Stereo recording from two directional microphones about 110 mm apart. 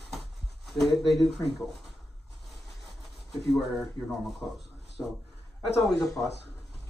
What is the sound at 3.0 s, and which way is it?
Speech, centre (ahead or behind).